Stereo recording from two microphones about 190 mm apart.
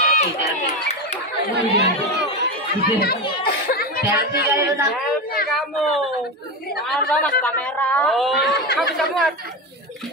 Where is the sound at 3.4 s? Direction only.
50° left (ahead or behind).